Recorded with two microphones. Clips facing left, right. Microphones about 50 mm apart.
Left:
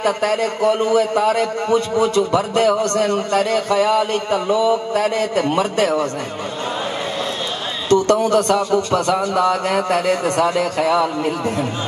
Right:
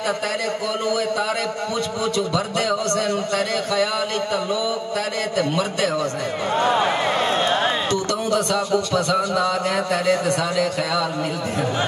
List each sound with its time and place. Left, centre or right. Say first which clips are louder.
0.0 s a man's voice: left 5 dB; left
7.9 s a man's voice: left 7 dB; left